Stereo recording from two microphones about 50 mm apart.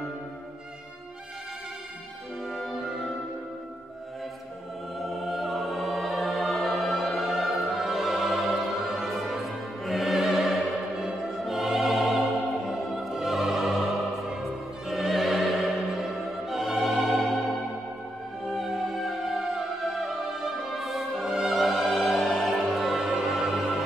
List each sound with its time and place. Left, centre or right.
2.4 s music: centre
4.9 s music: centre
11.1 s music: centre
11.4 s music: centre
14.9 s music: centre
18.5 s music: centre